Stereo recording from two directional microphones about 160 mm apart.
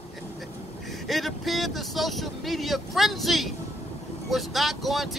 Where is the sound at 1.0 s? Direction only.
Centre (ahead or behind).